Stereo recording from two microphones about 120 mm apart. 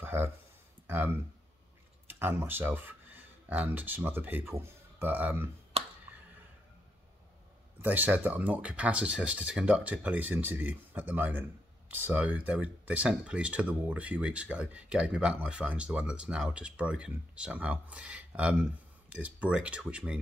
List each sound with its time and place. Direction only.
0.0 s a sound: 15° right (ahead or behind)
0.8 s speech: 15° right (ahead or behind)
7.8 s speech: 15° right (ahead or behind)